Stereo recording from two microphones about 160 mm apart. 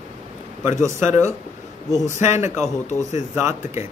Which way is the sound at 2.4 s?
15° right (ahead or behind).